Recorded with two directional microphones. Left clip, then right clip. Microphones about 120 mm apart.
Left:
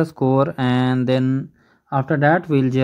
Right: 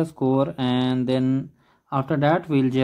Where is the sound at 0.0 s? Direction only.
30° left (ahead or behind).